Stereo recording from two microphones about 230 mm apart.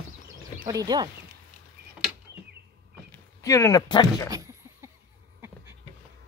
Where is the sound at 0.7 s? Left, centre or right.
Centre.